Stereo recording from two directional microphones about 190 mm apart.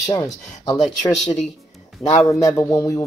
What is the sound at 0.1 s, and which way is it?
Speech, 20° left (ahead or behind).